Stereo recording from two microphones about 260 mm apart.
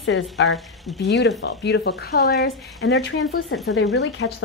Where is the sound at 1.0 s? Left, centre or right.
Left.